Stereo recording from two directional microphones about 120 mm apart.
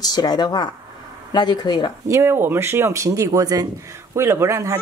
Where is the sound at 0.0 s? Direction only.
35° left (ahead or behind).